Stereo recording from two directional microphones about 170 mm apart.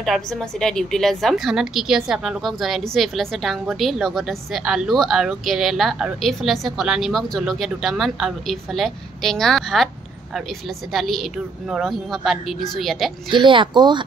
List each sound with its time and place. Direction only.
0.0 s a woman's voice: centre (ahead or behind)
10.9 s a woman's voice: centre (ahead or behind)
13.3 s speech: 30° right (ahead or behind)